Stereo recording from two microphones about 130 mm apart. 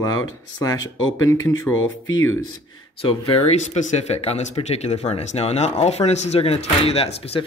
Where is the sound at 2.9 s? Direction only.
40° left (ahead or behind).